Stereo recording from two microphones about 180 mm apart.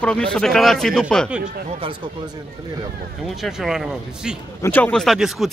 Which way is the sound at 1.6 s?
30° right (ahead or behind).